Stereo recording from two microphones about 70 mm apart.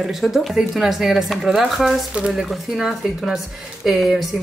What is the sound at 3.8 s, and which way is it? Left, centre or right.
Speech, centre.